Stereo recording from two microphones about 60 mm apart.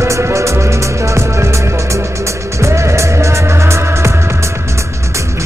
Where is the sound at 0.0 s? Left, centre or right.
Right.